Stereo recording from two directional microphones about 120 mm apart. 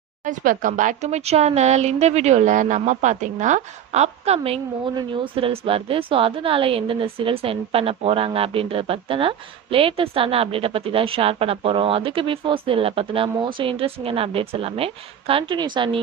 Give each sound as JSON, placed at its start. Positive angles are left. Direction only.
{"t": 0.3, "sound": "a woman's voice", "side_deg": -90}
{"t": 4.9, "sound": "a woman's voice", "side_deg": -45}
{"t": 15.5, "sound": "a woman's voice", "side_deg": -40}